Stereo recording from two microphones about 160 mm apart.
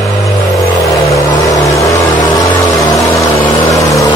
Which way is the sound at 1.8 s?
20° left (ahead or behind).